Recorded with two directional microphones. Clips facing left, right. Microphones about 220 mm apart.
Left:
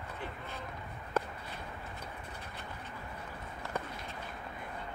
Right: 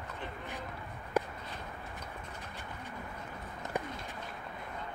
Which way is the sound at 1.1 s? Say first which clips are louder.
Right 2 dB; 15° right (ahead or behind).